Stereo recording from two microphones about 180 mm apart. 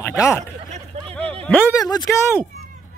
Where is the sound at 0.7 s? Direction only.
35° right (ahead or behind).